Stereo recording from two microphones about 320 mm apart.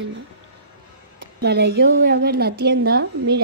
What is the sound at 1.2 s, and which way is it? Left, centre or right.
A woman's voice, right.